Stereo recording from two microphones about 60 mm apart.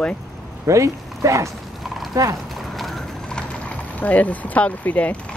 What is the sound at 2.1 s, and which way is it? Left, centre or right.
Speech, right.